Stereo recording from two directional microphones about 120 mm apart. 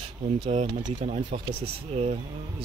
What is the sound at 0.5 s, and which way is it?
Speech, 85° right.